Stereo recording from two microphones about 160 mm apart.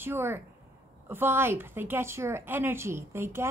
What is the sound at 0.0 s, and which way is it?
A woman's voice, 15° right (ahead or behind).